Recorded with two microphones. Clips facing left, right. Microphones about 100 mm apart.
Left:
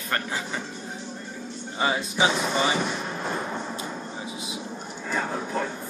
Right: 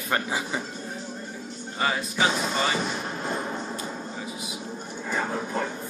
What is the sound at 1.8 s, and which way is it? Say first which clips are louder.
Speech: left 1 dB; 20° left (ahead or behind).